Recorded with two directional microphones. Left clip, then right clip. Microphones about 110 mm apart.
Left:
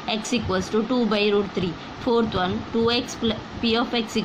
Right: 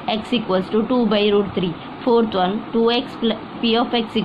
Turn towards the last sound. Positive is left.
turn(degrees=10)  # may be behind; listen again after turning